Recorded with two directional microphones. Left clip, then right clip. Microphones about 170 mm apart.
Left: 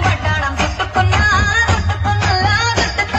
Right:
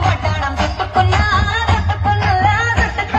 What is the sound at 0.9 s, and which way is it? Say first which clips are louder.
Music: left 1 dB; 55° right (ahead or behind).